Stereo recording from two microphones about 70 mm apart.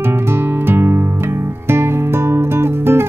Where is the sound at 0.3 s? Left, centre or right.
Right.